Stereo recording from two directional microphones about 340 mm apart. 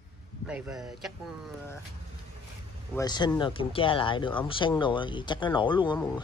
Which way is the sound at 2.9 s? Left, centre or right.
Centre.